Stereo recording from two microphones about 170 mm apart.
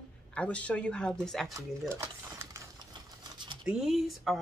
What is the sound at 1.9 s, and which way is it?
Mechanisms, 15° right (ahead or behind).